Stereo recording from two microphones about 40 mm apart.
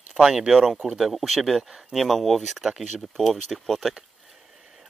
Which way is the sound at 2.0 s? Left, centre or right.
Centre.